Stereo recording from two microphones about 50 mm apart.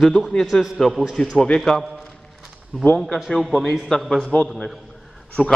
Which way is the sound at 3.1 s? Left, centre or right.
Centre.